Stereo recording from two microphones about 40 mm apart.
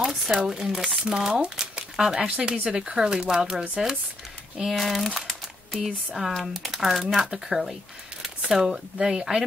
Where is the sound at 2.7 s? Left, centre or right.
Centre.